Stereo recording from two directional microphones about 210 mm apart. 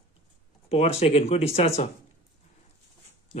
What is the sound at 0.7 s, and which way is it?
Speech, 30° left (ahead or behind).